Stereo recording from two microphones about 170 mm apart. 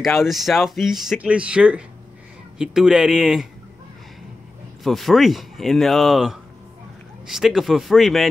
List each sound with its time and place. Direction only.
0.0 s speech: centre (ahead or behind)
4.8 s speech: centre (ahead or behind)